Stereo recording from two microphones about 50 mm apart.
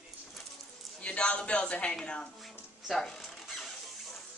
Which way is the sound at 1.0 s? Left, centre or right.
Left.